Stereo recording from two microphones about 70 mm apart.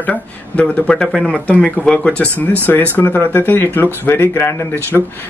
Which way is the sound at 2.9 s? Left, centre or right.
Left.